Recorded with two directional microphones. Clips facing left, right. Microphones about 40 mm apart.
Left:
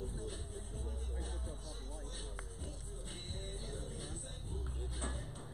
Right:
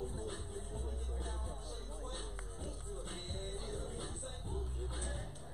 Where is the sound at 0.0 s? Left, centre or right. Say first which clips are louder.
Right 2 dB; right.